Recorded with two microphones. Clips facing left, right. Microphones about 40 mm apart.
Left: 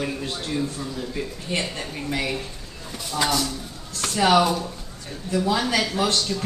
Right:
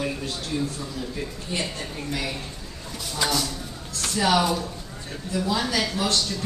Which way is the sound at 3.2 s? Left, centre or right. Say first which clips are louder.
Left 2 dB; centre.